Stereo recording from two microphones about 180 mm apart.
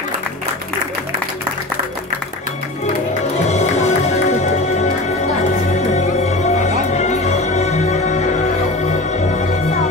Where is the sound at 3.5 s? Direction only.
40° left (ahead or behind).